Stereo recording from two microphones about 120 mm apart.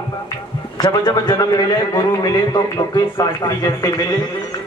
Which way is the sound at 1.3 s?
30° left (ahead or behind).